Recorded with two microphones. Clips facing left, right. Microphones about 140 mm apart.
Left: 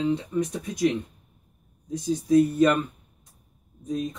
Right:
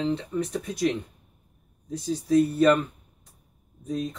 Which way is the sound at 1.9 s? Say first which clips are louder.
Left 2 dB; 15° left (ahead or behind).